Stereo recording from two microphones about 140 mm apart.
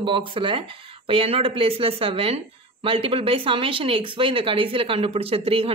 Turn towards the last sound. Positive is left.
turn(degrees=-40)  # may be behind; listen again after turning